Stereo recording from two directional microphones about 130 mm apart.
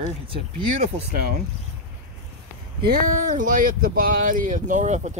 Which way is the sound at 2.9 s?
80° right.